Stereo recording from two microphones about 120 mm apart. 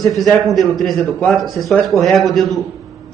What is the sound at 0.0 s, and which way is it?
A man's voice, centre (ahead or behind).